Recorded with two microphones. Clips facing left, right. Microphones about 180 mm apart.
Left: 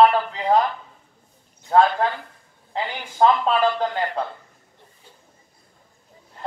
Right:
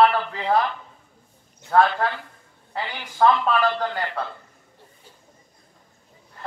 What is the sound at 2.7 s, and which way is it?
A man's voice, 20° left (ahead or behind).